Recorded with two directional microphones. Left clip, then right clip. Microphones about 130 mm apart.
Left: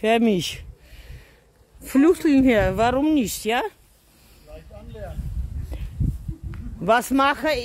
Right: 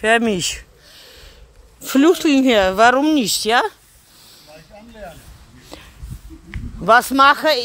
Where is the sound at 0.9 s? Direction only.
20° left (ahead or behind).